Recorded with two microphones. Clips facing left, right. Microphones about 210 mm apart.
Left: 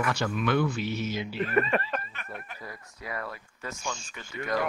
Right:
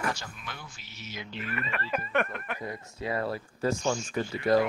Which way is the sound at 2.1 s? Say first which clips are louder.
Right 12 dB; 70° right (ahead or behind).